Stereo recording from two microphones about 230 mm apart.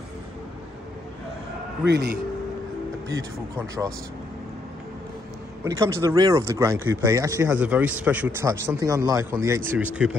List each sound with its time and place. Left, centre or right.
1.9 s a man's voice: right
3.1 s speech: centre
5.6 s speech: centre